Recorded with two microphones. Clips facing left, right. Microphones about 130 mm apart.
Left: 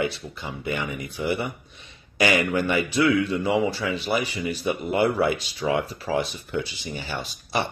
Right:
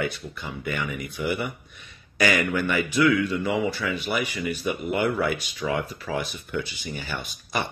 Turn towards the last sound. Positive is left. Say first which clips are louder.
# left 2 dB
turn(degrees=30)  # may be behind; listen again after turning